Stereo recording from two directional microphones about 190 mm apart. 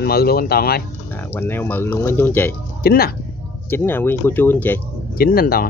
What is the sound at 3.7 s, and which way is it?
Speech, 10° left (ahead or behind).